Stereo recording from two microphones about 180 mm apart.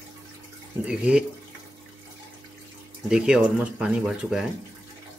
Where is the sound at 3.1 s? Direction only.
5° right (ahead or behind).